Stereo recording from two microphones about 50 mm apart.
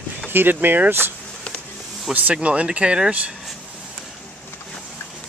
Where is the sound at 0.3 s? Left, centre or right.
Right.